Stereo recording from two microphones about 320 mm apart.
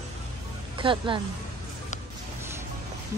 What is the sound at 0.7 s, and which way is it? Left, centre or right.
Speech, centre.